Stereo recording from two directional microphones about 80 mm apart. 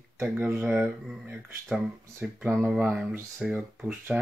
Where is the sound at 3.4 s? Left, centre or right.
Centre.